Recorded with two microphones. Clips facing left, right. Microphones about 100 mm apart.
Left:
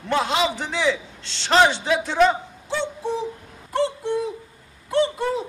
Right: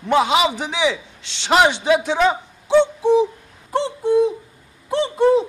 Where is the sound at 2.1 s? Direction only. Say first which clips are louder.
Even; 10° right (ahead or behind).